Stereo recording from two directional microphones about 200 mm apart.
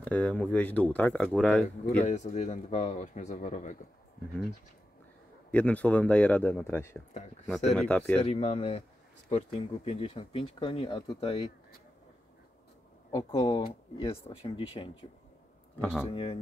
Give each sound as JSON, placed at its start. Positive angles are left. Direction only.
{"t": 0.0, "sound": "speech", "side_deg": 5}
{"t": 2.0, "sound": "speech", "side_deg": 35}
{"t": 5.5, "sound": "speech", "side_deg": 5}
{"t": 8.2, "sound": "speech", "side_deg": 30}
{"t": 13.1, "sound": "speech", "side_deg": 20}
{"t": 16.1, "sound": "speech", "side_deg": 25}